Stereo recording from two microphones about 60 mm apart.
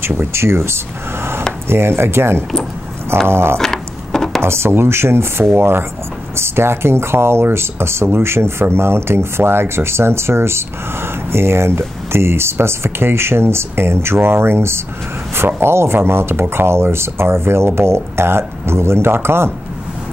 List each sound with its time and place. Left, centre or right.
0.0 s speech: right
3.5 s wood: centre
4.4 s speech: right